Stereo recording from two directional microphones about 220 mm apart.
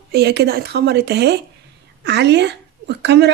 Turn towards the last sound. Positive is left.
turn(degrees=-50)  # may be behind; listen again after turning